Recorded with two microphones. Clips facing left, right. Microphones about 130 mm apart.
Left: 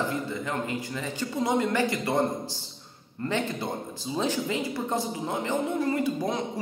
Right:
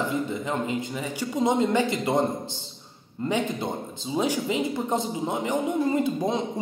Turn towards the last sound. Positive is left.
turn(degrees=-20)  # may be behind; listen again after turning